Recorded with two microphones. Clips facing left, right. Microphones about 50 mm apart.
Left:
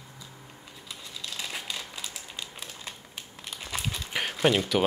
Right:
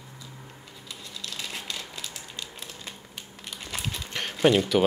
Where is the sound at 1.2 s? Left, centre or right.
Centre.